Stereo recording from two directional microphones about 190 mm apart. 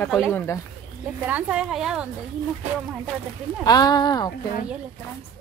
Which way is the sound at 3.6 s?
20° left (ahead or behind).